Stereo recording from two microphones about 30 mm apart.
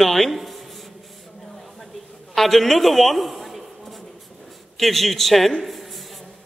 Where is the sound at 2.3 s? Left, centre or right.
Centre.